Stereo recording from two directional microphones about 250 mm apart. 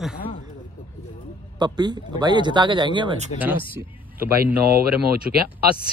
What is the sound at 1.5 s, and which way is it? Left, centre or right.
Speech, centre.